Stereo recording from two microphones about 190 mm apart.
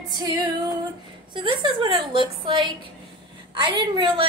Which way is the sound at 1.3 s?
25° right (ahead or behind).